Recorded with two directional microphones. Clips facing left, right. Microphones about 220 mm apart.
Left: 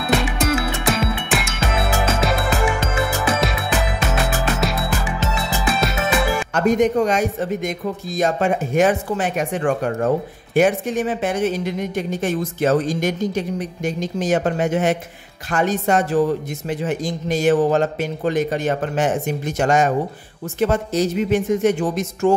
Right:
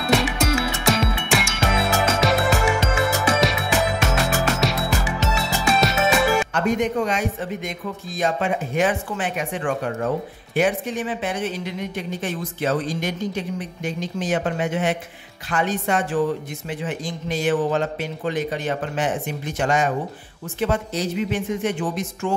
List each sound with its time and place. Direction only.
0.0 s music: centre (ahead or behind)
6.5 s speech: 40° left (ahead or behind)